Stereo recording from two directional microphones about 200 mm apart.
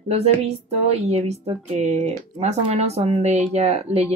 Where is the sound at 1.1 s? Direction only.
35° right (ahead or behind).